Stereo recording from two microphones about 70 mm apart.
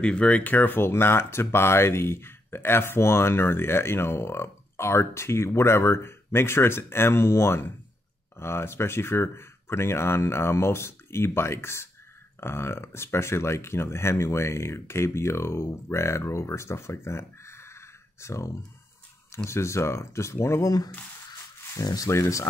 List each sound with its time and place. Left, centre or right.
0.0 s speech: centre; by 20.7 s left
21.8 s speech: left
22.1 s speech: left